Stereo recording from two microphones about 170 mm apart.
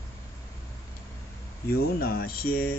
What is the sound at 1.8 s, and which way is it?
Speech, 65° left (ahead or behind).